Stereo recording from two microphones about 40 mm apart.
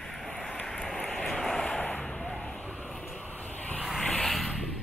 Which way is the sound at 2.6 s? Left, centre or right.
Centre.